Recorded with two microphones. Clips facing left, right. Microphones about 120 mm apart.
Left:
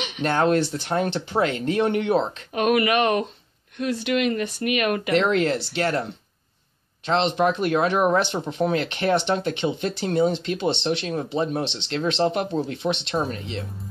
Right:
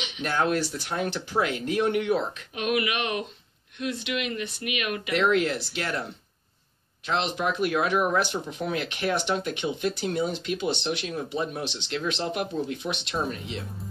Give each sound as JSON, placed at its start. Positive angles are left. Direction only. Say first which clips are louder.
{"t": 0.0, "sound": "a sound", "louder": "left 6 dB", "side_deg": 45}
{"t": 0.4, "sound": "speech", "louder": "left 4 dB", "side_deg": 25}
{"t": 2.5, "sound": "speech", "louder": "left 8 dB", "side_deg": 50}
{"t": 5.2, "sound": "speech", "louder": "left 2 dB", "side_deg": 35}
{"t": 7.4, "sound": "speech", "louder": "left 4 dB", "side_deg": 30}